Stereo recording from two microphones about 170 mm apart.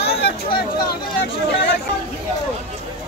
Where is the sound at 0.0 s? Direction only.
75° left (ahead or behind).